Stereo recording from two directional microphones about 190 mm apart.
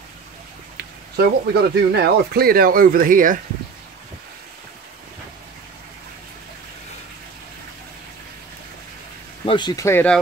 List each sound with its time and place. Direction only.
1.1 s speech: 55° right (ahead or behind)
9.5 s speech: 25° left (ahead or behind)